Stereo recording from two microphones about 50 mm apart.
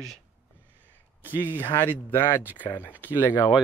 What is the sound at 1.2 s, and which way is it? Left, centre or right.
Speech, left.